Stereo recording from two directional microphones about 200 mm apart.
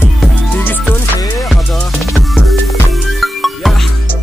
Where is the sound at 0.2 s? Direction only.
10° left (ahead or behind).